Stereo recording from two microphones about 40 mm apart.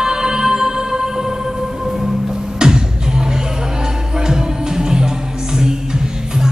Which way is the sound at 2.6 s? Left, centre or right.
Centre.